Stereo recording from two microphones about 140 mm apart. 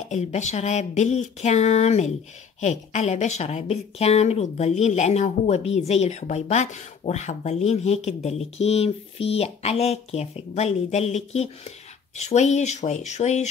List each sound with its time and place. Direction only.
0.1 s a woman's voice: 55° left (ahead or behind)